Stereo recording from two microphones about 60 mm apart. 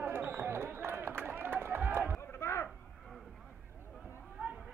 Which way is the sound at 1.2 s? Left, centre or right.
Right.